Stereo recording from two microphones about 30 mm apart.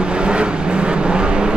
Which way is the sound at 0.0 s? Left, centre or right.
Right.